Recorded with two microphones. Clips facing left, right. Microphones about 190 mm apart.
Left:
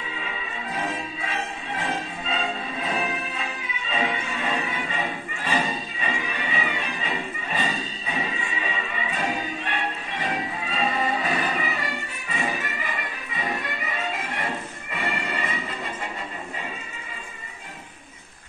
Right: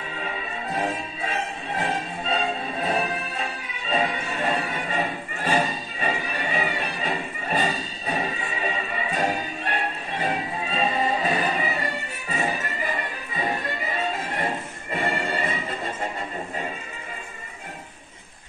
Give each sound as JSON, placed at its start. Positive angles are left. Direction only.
{"t": 1.8, "sound": "music", "side_deg": -35}
{"t": 12.3, "sound": "music", "side_deg": -40}